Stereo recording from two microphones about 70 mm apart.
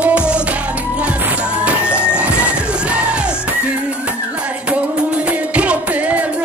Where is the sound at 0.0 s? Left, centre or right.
Centre.